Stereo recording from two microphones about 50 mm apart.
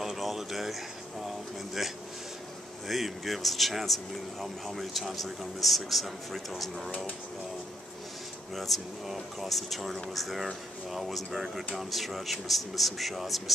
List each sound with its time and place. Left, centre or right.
0.0 s a sound: centre
1.2 s speech: centre
2.9 s speech: centre
8.5 s speech: centre